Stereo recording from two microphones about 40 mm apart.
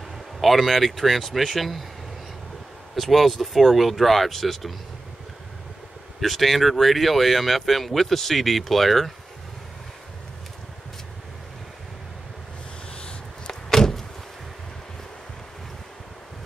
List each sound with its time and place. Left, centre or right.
0.4 s speech: centre
3.0 s speech: centre
6.2 s speech: centre
13.5 s door: centre